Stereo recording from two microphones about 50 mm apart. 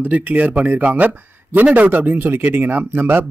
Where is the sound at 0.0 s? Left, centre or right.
Right.